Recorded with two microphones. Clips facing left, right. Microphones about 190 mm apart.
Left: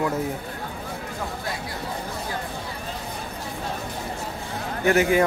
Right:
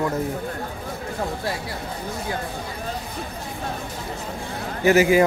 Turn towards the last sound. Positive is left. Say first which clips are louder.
# right 3 dB
turn(degrees=-5)  # may be behind; listen again after turning